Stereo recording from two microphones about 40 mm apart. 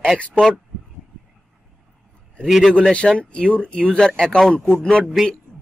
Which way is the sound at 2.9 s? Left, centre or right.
Left.